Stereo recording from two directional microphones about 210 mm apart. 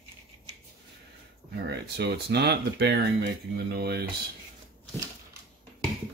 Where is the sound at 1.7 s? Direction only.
50° right (ahead or behind).